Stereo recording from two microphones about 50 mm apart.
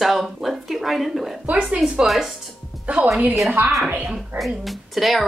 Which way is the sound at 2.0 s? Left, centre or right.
Centre.